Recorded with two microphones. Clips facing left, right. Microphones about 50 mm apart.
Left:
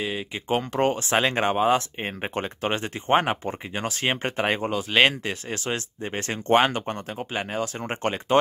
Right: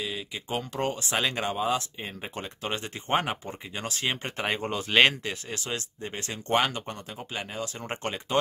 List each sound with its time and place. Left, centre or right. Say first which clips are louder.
0.0 s speech: left 5 dB; left
1.4 s speech: left 7 dB; left
4.6 s speech: even; centre
5.2 s speech: left 5 dB; left